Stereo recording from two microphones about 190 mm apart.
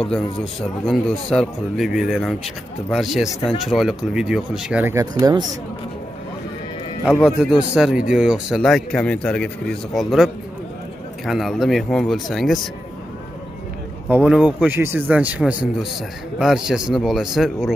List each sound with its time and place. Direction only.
0.0 s speech: 5° left (ahead or behind); by 5.4 s 15° right (ahead or behind)
7.2 s speech: 5° right (ahead or behind)
14.0 s speech: 10° right (ahead or behind)